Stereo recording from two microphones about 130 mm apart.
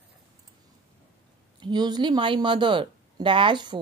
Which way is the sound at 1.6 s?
35° right (ahead or behind).